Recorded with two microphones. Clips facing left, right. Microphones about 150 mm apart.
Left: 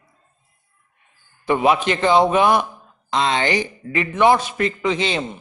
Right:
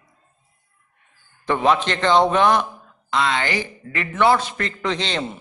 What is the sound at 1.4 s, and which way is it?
A man's voice, 10° left (ahead or behind).